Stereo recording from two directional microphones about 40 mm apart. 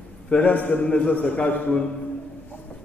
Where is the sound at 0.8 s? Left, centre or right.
Left.